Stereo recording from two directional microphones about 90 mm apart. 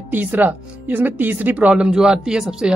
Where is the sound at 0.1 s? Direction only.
20° right (ahead or behind).